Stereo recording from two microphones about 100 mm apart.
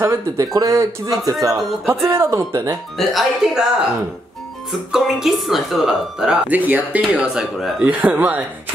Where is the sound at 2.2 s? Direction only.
30° right (ahead or behind).